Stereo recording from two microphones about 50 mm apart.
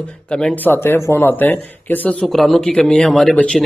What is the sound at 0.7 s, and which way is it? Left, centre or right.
Speech, left.